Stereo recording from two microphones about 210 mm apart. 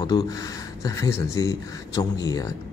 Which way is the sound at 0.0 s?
15° left (ahead or behind).